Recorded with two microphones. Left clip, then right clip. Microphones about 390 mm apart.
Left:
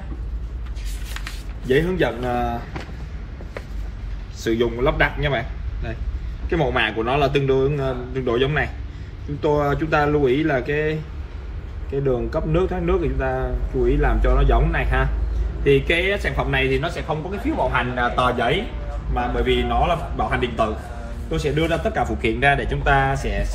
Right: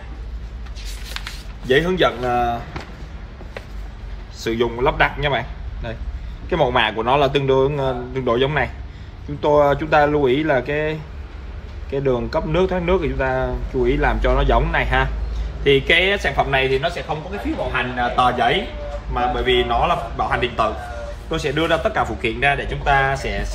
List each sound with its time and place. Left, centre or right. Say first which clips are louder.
1.7 s speech: right 3 dB; centre
4.4 s speech: right 1 dB; centre
6.5 s speech: right 3 dB; centre
17.7 s speech: right 2 dB; centre